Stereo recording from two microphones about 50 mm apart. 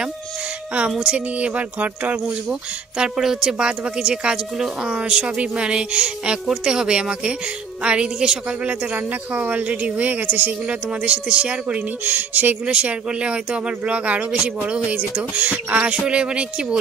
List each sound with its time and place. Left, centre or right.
0.9 s speech: right
3.0 s a woman's voice: centre
8.5 s speech: right
10.7 s speech: right
12.0 s speech: right
12.6 s speech: right